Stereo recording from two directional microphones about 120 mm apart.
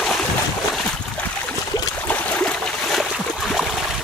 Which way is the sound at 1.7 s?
35° left (ahead or behind).